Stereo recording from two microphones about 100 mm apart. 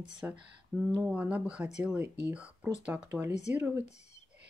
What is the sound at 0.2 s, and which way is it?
Speech, 15° right (ahead or behind).